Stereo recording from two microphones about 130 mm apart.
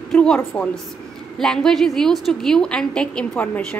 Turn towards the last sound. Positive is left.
turn(degrees=10)  # may be behind; listen again after turning